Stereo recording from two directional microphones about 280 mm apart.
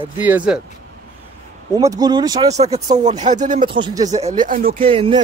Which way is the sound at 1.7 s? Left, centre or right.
Centre.